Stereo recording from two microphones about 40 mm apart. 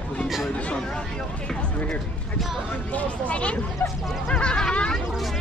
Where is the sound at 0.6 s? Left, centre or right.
Left.